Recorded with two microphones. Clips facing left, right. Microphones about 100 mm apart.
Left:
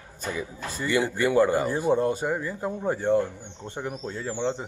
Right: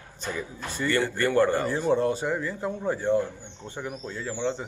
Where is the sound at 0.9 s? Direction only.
10° left (ahead or behind).